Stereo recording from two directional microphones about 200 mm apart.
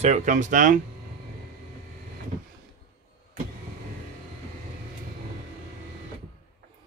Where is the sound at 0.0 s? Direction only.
35° right (ahead or behind).